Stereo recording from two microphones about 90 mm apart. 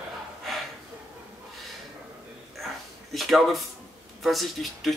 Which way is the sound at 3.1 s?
Centre (ahead or behind).